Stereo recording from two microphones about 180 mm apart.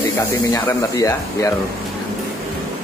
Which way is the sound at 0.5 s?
20° left (ahead or behind).